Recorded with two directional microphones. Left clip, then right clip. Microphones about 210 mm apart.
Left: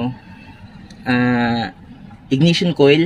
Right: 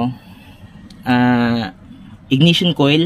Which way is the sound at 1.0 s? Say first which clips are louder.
Right 2 dB; 40° right (ahead or behind).